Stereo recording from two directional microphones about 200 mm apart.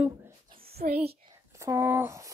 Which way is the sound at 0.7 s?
50° right (ahead or behind).